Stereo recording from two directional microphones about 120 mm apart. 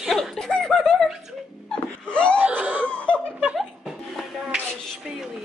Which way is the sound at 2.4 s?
15° right (ahead or behind).